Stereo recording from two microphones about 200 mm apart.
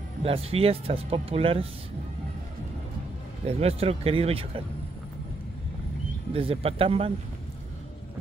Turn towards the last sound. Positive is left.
turn(degrees=-30)  # may be behind; listen again after turning